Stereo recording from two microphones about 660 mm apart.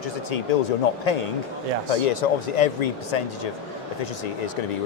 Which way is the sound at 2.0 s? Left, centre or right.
Left.